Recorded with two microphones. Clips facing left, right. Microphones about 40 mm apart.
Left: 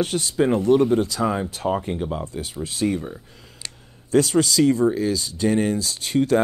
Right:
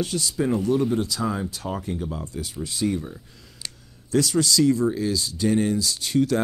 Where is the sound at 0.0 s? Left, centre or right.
Left.